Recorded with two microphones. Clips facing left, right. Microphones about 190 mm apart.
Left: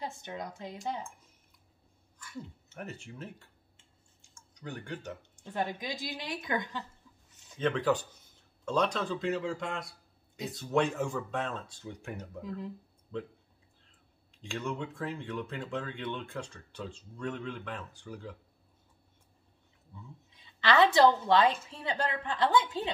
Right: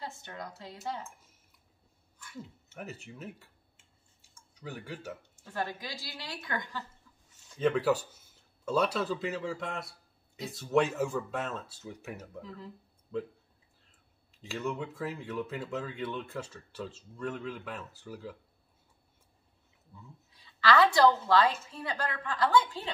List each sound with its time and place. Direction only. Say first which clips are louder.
0.0 s a woman's voice: left 3 dB; 15° left (ahead or behind)
2.7 s a sound: left 1 dB; 5° right (ahead or behind)
5.4 s a woman's voice: left 2 dB; 20° left (ahead or behind)
7.5 s a man's voice: right 2 dB; 5° right (ahead or behind)
12.4 s a woman's voice: left 5 dB; 15° left (ahead or behind)
13.1 s speech: right 3 dB; 5° right (ahead or behind)
14.4 s speech: right 1 dB; 5° right (ahead or behind)
19.9 s speech: left 2 dB; centre (ahead or behind)
20.3 s a woman's voice: even; 20° left (ahead or behind)